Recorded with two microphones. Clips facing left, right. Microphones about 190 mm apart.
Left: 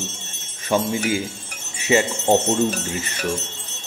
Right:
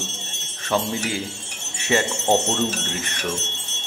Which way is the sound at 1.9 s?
10° left (ahead or behind).